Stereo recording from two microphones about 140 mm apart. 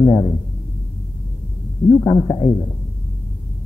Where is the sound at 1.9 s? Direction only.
30° left (ahead or behind).